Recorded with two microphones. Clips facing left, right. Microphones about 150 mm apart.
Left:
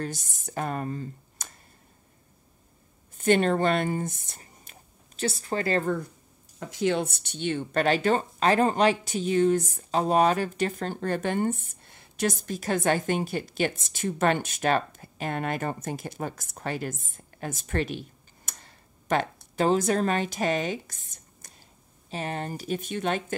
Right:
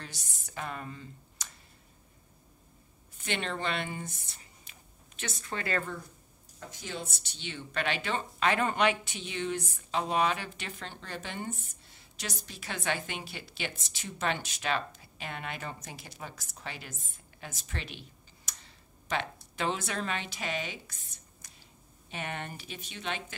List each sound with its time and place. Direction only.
0.0 s speech: 50° left (ahead or behind)
3.2 s speech: 45° left (ahead or behind)
6.7 s speech: 70° left (ahead or behind); by 23.2 s 50° left (ahead or behind)